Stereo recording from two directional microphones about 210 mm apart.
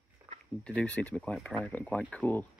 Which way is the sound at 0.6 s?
5° left (ahead or behind).